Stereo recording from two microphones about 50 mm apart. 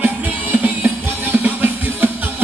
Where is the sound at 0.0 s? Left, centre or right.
Right.